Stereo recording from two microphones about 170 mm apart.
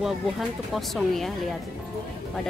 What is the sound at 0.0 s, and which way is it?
Speech, centre (ahead or behind).